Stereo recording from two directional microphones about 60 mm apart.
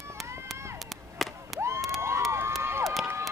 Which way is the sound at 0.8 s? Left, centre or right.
Centre.